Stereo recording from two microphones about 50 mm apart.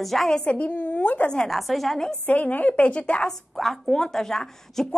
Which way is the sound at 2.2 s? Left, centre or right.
Left.